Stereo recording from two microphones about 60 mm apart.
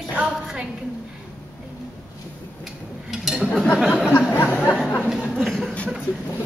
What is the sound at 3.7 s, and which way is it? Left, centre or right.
Speech, centre.